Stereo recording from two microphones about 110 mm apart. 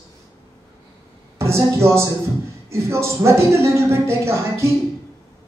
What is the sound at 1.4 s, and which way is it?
A man's voice, 25° right (ahead or behind).